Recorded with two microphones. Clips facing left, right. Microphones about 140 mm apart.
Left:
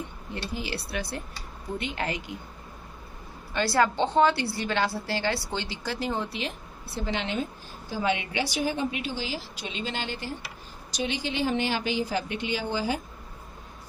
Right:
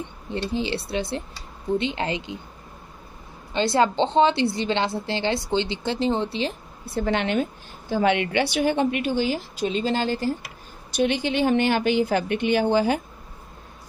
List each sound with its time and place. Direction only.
0.5 s a woman's voice: 25° right (ahead or behind)
3.5 s a woman's voice: 20° right (ahead or behind)
6.9 s a woman's voice: 55° right (ahead or behind)
10.9 s speech: 55° right (ahead or behind)